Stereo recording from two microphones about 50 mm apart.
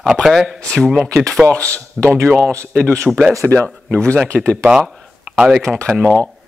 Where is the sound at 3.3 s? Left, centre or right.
Right.